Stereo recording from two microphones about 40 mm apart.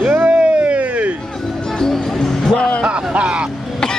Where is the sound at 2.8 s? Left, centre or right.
Right.